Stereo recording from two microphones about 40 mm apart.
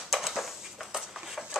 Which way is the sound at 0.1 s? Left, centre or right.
Centre.